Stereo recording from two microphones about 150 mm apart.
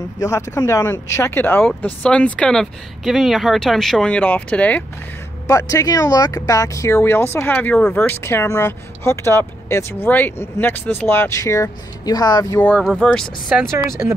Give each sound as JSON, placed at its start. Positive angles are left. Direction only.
{"t": 0.2, "sound": "speech", "side_deg": 20}
{"t": 5.5, "sound": "speech", "side_deg": 20}
{"t": 12.5, "sound": "speech", "side_deg": 10}
{"t": 13.5, "sound": "speech", "side_deg": -5}
{"t": 14.0, "sound": "speech", "side_deg": -20}